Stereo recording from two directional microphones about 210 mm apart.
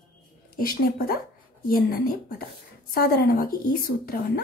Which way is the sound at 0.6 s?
45° left (ahead or behind).